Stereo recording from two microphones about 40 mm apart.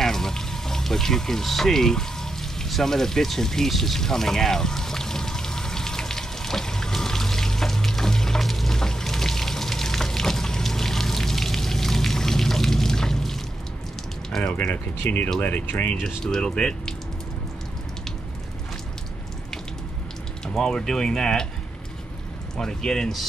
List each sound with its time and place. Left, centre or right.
0.0 s water: centre
2.7 s a sound: centre
14.7 s speech: left
16.3 s speech: centre
20.4 s speech: centre
22.6 s speech: centre